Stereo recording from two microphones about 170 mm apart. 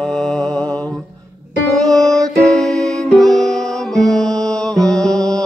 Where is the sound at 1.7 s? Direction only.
5° left (ahead or behind).